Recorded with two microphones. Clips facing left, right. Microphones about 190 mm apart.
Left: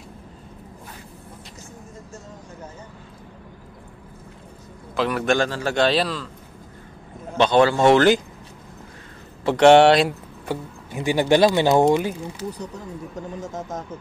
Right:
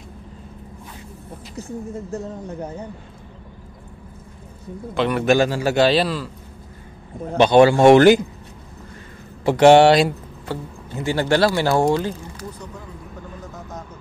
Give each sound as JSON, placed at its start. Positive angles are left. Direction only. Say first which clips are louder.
{"t": 1.6, "sound": "speech", "louder": "right 16 dB", "side_deg": -65}
{"t": 4.9, "sound": "a man's voice", "louder": "right 3 dB", "side_deg": 0}
{"t": 7.3, "sound": "speech", "louder": "right 4 dB", "side_deg": -15}
{"t": 9.4, "sound": "a man's voice", "louder": "right 1 dB", "side_deg": -5}
{"t": 10.5, "sound": "speech", "louder": "left 1 dB", "side_deg": 15}
{"t": 13.5, "sound": "speech", "louder": "left 5 dB", "side_deg": 45}